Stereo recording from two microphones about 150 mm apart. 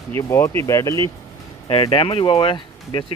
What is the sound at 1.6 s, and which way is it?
Speech, 40° left (ahead or behind).